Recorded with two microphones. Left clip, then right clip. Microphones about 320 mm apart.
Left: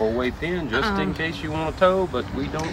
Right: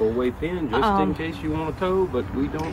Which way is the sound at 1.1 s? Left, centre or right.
Left.